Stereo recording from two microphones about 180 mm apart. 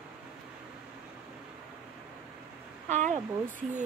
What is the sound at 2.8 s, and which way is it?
Speech, 40° right (ahead or behind).